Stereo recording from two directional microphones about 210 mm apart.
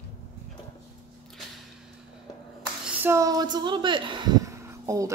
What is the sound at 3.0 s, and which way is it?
A woman's voice, 15° right (ahead or behind).